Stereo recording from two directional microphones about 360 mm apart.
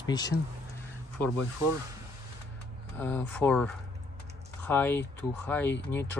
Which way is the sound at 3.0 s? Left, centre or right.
Centre.